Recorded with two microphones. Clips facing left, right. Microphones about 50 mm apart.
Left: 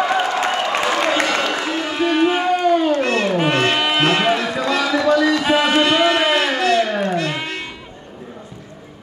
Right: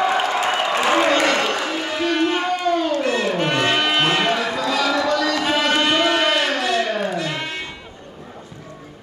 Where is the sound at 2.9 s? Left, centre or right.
Left.